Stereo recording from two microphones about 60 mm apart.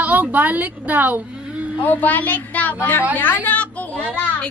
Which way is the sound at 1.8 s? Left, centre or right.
Left.